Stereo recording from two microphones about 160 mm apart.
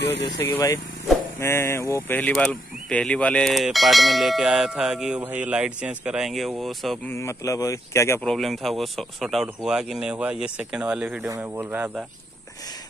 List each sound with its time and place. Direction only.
0.0 s speech: 90° left
0.4 s speech: 20° left (ahead or behind); by 7.0 s centre (ahead or behind)
7.1 s speech: 20° left (ahead or behind)
8.2 s speech: centre (ahead or behind)
11.2 s speech: 20° right (ahead or behind)
11.7 s speech: 10° right (ahead or behind)